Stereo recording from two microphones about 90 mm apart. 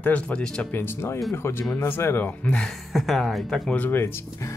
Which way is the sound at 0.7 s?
25° left (ahead or behind).